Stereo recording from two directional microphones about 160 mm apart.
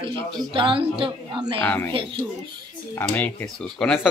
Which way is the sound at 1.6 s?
10° left (ahead or behind).